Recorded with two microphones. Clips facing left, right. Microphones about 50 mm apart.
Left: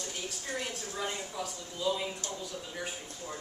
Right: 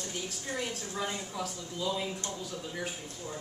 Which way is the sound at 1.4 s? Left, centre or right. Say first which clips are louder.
Right 2 dB; centre.